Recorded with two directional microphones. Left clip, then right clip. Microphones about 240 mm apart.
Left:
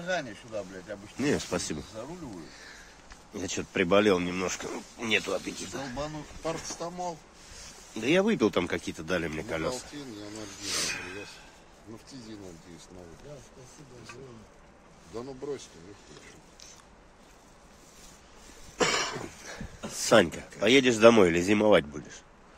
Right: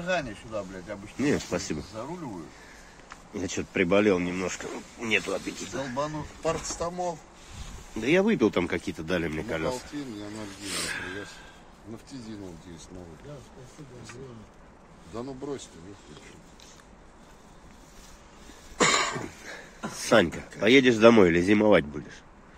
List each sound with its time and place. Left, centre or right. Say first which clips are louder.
0.0 s speech: right 3 dB; centre
1.1 s speech: right 2 dB; centre
3.3 s speech: right 2 dB; centre
6.4 s speech: right 5 dB; right
8.0 s speech: right 2 dB; centre
15.1 s speech: right 1 dB; right
18.8 s cough: right 4 dB; right
19.4 s speech: right 3 dB; centre